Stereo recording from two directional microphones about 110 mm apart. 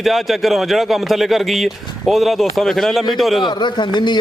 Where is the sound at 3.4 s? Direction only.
45° left (ahead or behind).